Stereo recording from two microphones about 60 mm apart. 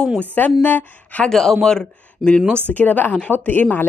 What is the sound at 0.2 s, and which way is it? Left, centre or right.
A woman's voice, left.